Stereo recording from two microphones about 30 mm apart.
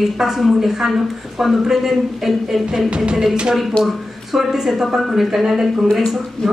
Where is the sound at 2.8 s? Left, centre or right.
Right.